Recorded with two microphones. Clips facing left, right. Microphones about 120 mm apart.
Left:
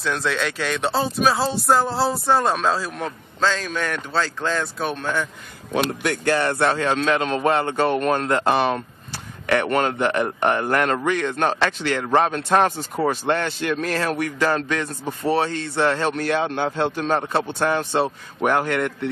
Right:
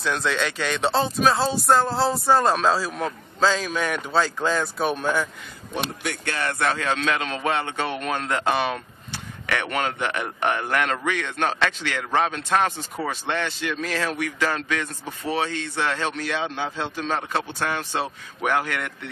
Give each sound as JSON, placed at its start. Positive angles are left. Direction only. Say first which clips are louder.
{"t": 0.0, "sound": "speech", "louder": "left 1 dB", "side_deg": 0}
{"t": 5.7, "sound": "speech", "louder": "left 7 dB", "side_deg": 65}
{"t": 6.3, "sound": "speech", "louder": "left 3 dB", "side_deg": 30}
{"t": 16.2, "sound": "speech", "louder": "left 5 dB", "side_deg": 50}
{"t": 17.6, "sound": "speech", "louder": "left 6 dB", "side_deg": 30}